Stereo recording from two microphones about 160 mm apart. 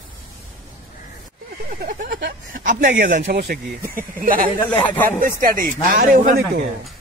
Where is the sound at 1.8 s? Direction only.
60° right (ahead or behind); by 3.6 s 90° right.